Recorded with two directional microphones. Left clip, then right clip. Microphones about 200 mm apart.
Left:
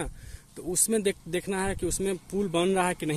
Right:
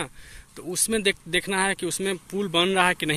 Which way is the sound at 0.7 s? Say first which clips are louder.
Right 3 dB; 10° left (ahead or behind).